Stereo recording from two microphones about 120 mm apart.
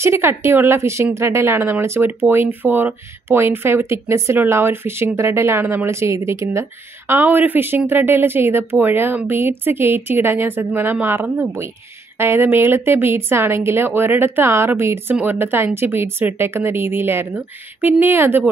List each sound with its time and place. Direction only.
0.0 s a woman's voice: 20° right (ahead or behind)